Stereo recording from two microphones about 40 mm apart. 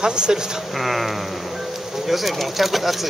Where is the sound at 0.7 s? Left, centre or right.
Centre.